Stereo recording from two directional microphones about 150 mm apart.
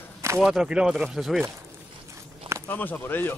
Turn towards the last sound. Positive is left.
turn(degrees=15)  # may be behind; listen again after turning